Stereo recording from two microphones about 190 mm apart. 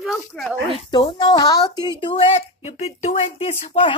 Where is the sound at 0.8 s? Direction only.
25° left (ahead or behind).